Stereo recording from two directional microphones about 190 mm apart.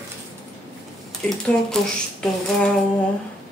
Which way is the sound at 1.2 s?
5° left (ahead or behind).